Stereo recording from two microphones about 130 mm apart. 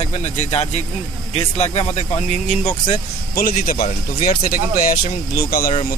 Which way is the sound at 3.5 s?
90° left.